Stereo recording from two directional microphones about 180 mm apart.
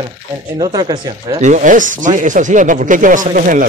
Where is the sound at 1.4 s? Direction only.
45° right (ahead or behind).